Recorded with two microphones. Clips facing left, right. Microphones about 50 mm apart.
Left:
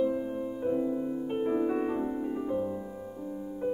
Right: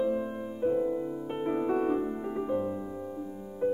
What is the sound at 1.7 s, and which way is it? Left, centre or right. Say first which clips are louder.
Piano: right 2 dB; centre.